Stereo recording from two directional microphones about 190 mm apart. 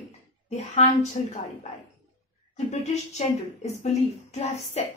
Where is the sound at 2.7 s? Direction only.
35° left (ahead or behind).